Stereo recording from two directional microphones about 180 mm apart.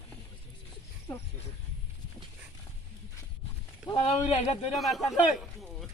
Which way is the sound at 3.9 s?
35° left (ahead or behind).